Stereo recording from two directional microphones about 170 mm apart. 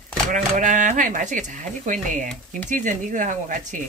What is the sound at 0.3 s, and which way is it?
Speech, 50° right (ahead or behind).